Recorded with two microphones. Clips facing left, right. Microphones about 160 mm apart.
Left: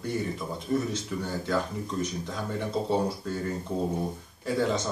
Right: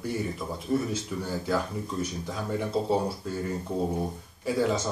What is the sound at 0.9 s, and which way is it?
Speech, 10° right (ahead or behind).